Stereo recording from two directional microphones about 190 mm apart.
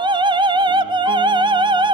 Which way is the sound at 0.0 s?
25° right (ahead or behind).